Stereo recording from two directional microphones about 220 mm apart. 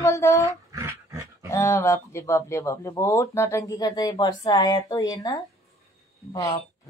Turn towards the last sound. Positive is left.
turn(degrees=15)  # may be behind; listen again after turning